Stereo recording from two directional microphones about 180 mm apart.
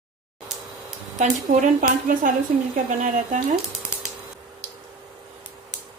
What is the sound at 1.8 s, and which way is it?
Speech, 50° right (ahead or behind).